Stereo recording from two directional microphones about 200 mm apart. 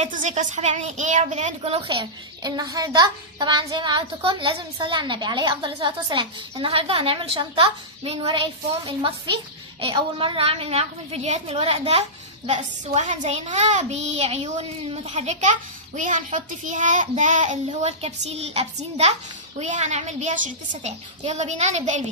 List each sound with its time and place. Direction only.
0.0 s a woman's voice: 35° right (ahead or behind)